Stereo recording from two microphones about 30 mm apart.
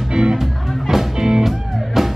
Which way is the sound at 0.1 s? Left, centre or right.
Right.